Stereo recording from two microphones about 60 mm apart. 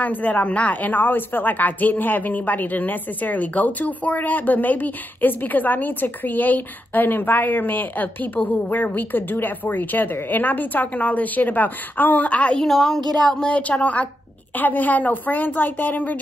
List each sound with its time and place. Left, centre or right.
0.0 s a woman's voice: left
12.5 s a woman's voice: centre
13.5 s speech: left